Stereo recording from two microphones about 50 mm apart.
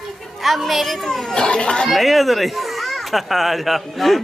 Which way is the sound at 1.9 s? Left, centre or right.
Centre.